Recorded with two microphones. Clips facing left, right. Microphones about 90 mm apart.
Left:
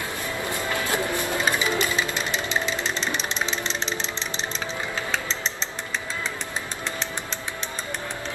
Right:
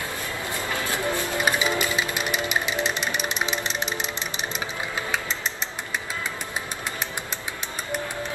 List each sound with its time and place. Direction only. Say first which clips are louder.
0.9 s music: right 1 dB; 20° left (ahead or behind)
1.4 s music: right 1 dB; 15° right (ahead or behind)
5.1 s a sound: even; 10° right (ahead or behind)